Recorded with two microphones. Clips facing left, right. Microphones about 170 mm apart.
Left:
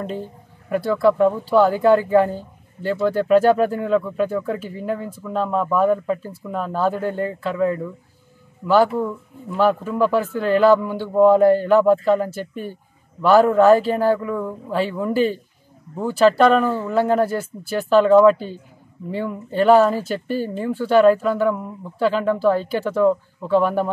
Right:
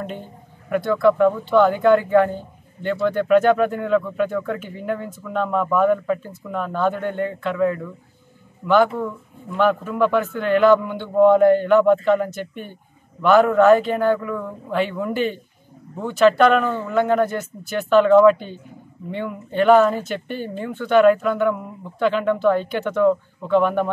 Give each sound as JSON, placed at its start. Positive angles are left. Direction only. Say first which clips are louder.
{"t": 0.7, "sound": "speech", "louder": "even", "side_deg": 35}
{"t": 9.9, "sound": "speech", "louder": "even", "side_deg": 35}